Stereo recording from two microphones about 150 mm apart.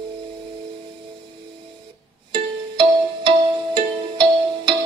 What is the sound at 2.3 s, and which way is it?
Music, 35° right (ahead or behind).